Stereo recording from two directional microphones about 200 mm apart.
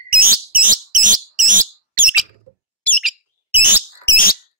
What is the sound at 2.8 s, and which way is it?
Bird, 5° left (ahead or behind).